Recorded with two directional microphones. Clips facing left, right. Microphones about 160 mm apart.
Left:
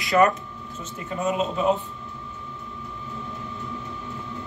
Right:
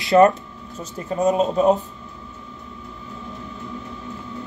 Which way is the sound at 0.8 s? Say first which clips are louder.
Right 7 dB; 40° right (ahead or behind).